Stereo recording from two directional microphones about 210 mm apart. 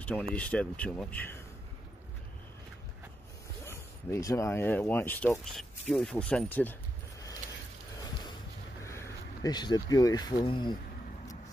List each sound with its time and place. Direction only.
0.0 s speech: 5° left (ahead or behind)
3.6 s speech: 10° left (ahead or behind)
8.0 s a sound: 20° left (ahead or behind)
8.8 s speech: 15° left (ahead or behind)